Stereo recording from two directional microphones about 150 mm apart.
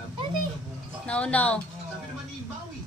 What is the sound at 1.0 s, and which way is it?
Speech, 10° left (ahead or behind).